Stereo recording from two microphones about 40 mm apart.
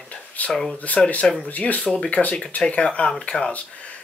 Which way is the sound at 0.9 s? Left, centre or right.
Left.